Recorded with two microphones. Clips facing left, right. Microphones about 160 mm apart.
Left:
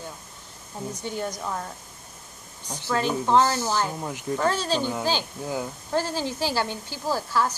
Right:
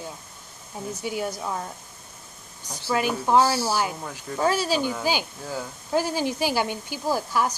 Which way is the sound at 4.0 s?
20° left (ahead or behind).